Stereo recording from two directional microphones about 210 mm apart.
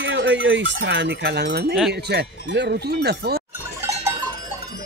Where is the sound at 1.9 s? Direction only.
50° right (ahead or behind).